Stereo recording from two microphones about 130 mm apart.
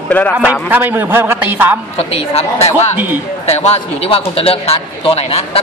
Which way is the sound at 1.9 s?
50° left (ahead or behind).